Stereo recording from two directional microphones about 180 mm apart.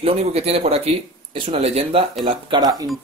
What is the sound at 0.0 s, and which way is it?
Speech, 35° right (ahead or behind).